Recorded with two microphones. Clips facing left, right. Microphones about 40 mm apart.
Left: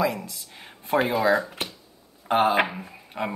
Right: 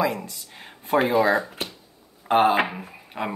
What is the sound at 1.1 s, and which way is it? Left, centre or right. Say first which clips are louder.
Speech: right 2 dB; right.